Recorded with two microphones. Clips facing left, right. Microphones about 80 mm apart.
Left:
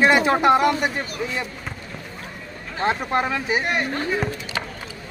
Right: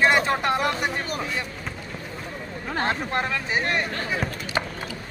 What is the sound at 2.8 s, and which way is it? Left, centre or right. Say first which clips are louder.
Speech: left 5 dB; centre.